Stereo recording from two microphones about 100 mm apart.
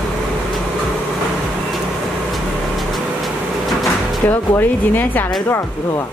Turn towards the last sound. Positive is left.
turn(degrees=20)  # may be behind; listen again after turning